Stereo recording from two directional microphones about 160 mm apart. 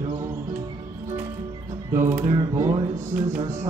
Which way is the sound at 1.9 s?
15° right (ahead or behind).